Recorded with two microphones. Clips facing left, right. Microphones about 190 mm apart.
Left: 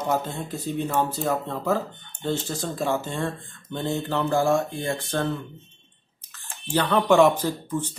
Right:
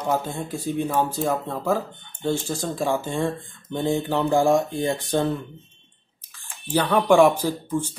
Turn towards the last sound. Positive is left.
turn(degrees=-10)  # may be behind; listen again after turning